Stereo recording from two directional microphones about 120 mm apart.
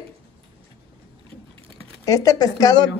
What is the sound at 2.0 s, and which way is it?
Speech, 30° left (ahead or behind).